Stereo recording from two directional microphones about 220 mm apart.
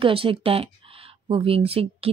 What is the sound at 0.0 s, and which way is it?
Speech, 25° right (ahead or behind).